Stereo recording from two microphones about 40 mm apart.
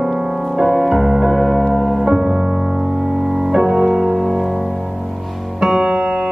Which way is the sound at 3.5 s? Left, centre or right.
Centre.